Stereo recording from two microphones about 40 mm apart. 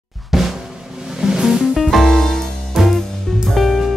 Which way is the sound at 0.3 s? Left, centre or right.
Centre.